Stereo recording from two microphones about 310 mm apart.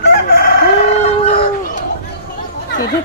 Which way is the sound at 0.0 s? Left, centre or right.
Left.